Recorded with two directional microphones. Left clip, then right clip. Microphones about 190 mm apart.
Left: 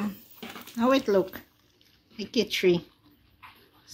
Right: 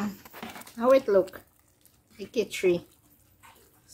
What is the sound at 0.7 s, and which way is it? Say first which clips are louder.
Speech: right 2 dB; 40° left (ahead or behind).